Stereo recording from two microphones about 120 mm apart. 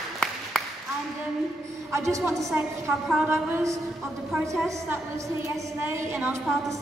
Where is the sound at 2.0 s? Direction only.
25° right (ahead or behind).